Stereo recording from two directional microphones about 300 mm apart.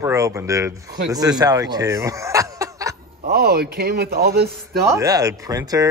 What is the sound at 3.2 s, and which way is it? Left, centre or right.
A man's voice, right.